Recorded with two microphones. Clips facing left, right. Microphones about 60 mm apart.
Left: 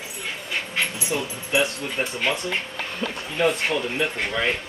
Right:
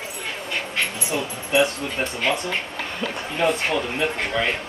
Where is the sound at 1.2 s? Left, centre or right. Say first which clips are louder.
Right 2 dB; right.